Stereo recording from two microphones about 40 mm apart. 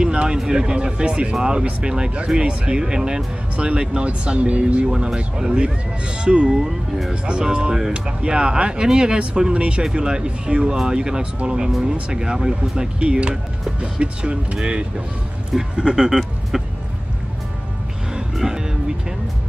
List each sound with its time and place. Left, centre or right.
0.0 s a sound: right
0.4 s speech: right
6.5 s speech: centre
7.2 s speech: right
18.4 s music: centre